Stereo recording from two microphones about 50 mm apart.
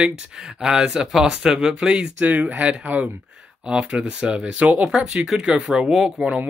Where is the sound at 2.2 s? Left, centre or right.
Right.